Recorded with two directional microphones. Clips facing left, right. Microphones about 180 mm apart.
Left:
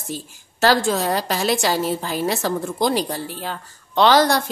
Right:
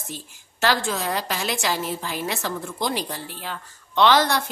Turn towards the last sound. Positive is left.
turn(degrees=40)  # may be behind; listen again after turning